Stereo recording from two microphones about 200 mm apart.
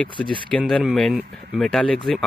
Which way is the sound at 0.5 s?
5° left (ahead or behind).